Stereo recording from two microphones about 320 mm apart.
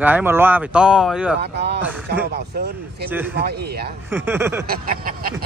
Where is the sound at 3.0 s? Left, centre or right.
Centre.